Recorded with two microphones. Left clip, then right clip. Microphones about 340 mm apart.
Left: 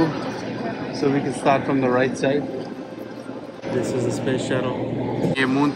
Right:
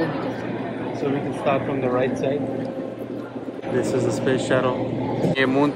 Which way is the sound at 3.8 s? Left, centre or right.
Centre.